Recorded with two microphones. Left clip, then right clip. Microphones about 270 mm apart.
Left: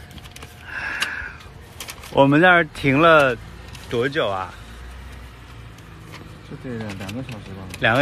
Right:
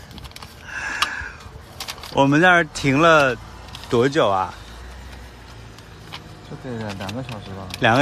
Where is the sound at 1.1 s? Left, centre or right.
Centre.